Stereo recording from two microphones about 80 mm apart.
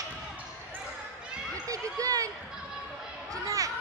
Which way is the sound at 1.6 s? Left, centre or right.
Right.